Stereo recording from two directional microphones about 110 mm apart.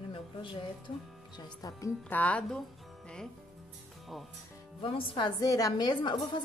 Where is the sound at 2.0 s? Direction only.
15° left (ahead or behind).